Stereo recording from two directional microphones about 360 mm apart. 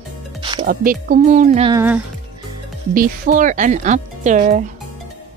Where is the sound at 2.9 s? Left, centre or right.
Right.